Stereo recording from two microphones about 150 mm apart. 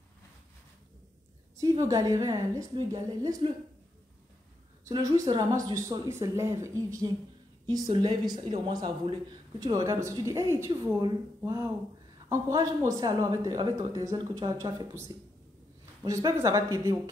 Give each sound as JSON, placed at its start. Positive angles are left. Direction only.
{"t": 1.6, "sound": "speech", "side_deg": -25}
{"t": 4.8, "sound": "a woman's voice", "side_deg": -20}